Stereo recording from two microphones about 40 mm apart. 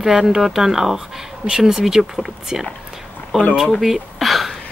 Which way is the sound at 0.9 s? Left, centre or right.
Right.